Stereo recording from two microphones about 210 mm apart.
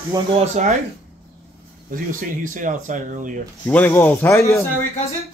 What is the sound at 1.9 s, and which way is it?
Speech, 40° right (ahead or behind).